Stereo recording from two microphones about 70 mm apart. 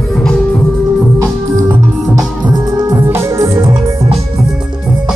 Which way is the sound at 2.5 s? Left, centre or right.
Right.